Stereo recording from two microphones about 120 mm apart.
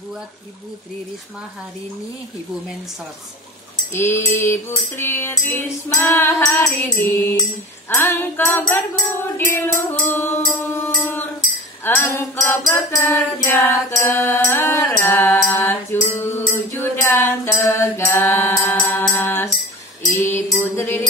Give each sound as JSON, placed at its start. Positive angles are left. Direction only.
{"t": 3.9, "sound": "music", "side_deg": 20}
{"t": 12.6, "sound": "music", "side_deg": 25}
{"t": 13.5, "sound": "music", "side_deg": 15}
{"t": 13.9, "sound": "mantra", "side_deg": 20}
{"t": 20.2, "sound": "music", "side_deg": 20}